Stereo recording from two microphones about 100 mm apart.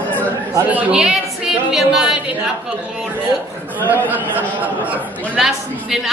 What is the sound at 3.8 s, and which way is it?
Speech, 20° right (ahead or behind).